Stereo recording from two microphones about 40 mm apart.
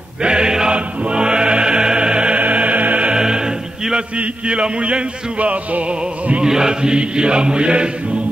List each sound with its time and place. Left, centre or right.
0.2 s chant: right
0.7 s music: right
2.4 s music: right
3.1 s choir: centre
4.2 s music: right
6.4 s chant: centre